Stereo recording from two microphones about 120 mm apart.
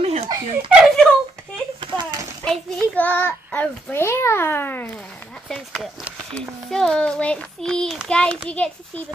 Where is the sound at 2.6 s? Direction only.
10° left (ahead or behind).